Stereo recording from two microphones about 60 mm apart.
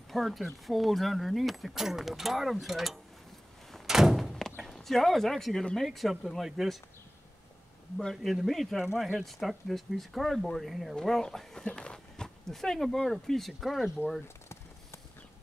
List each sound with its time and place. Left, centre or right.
0.1 s speech: centre
3.8 s thunk: centre
4.6 s speech: centre
8.0 s speech: centre
14.2 s a sound: left